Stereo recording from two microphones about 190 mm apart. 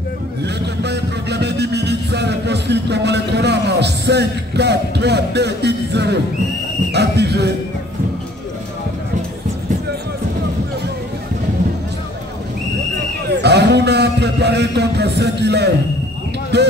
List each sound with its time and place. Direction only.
0.4 s music: 60° right (ahead or behind)
6.9 s a sound: 60° right (ahead or behind)
13.3 s a man's voice: 60° right (ahead or behind)